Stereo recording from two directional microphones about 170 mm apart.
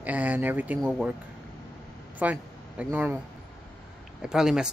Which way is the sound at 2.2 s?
10° right (ahead or behind).